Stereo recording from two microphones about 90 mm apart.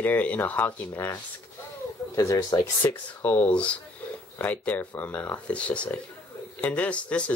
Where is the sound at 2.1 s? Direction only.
40° left (ahead or behind).